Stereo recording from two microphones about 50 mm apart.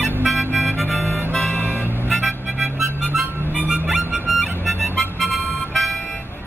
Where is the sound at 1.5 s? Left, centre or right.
Left.